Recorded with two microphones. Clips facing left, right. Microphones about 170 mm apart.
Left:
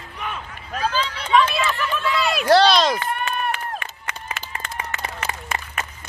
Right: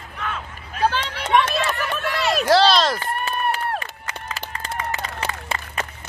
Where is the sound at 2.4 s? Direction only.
Centre (ahead or behind).